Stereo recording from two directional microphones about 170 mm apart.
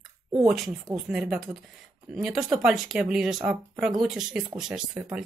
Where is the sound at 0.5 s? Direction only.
Centre (ahead or behind).